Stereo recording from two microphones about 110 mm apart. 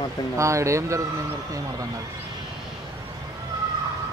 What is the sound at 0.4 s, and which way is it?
Speech, 25° right (ahead or behind).